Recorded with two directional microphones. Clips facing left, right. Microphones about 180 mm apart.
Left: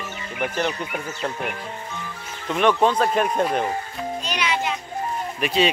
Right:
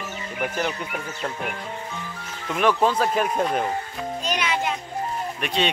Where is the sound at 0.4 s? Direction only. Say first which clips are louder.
Left 2 dB; 5° right (ahead or behind).